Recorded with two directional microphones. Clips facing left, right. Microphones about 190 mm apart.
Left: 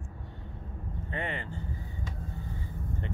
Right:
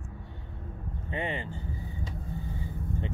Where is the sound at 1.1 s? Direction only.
20° right (ahead or behind).